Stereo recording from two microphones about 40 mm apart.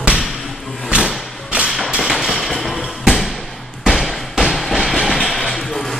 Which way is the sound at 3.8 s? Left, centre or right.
Centre.